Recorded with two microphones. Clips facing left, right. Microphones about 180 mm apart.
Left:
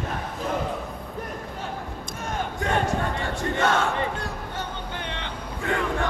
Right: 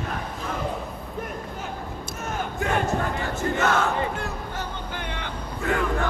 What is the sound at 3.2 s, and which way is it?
Crowd, 30° left (ahead or behind).